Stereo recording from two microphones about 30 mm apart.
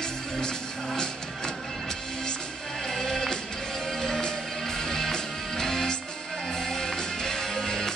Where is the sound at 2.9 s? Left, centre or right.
Centre.